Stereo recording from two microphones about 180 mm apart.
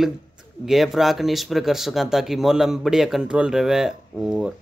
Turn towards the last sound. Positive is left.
turn(degrees=-5)  # may be behind; listen again after turning